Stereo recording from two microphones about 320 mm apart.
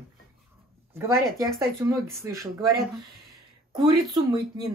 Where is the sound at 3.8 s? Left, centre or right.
Centre.